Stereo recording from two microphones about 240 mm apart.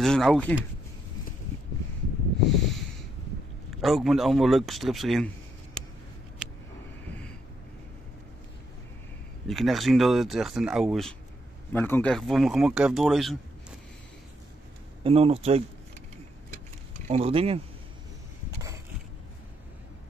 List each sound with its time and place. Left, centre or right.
0.0 s speech: centre
2.4 s snort: centre
3.8 s speech: centre
5.8 s a sound: centre
9.5 s speech: centre
15.0 s speech: right
17.1 s speech: right